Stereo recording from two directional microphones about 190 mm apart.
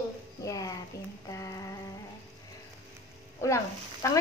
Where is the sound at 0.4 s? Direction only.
20° left (ahead or behind).